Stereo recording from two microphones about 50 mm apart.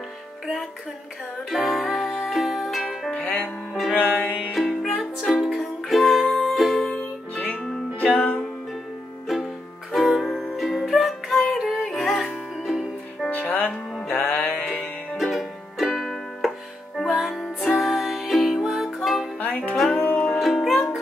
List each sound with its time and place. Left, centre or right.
1.5 s music: centre
3.9 s music: left
4.5 s music: centre
9.3 s music: centre
13.5 s music: left
14.8 s music: centre
18.6 s music: centre
19.9 s music: left
20.3 s music: centre